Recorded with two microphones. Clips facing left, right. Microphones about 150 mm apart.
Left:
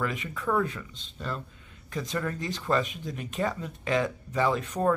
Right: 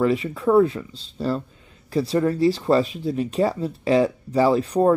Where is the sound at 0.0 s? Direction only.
30° right (ahead or behind).